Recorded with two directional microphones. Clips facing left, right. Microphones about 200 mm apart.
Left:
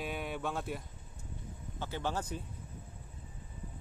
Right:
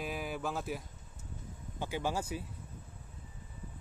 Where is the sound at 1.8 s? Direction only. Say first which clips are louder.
Right 2 dB; 10° right (ahead or behind).